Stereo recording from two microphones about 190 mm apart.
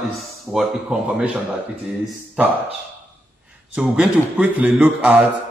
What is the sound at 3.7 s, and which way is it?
A man's voice, 5° right (ahead or behind).